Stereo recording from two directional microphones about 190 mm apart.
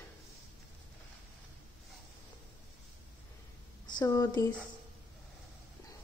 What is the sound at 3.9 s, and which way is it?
Speech, 20° left (ahead or behind).